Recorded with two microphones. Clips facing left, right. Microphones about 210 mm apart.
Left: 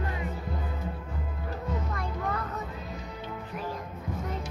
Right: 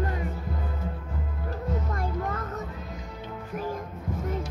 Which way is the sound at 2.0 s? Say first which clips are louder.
Right 2 dB; 45° right (ahead or behind).